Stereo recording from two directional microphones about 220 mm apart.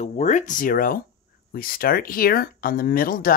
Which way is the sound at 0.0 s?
30° left (ahead or behind).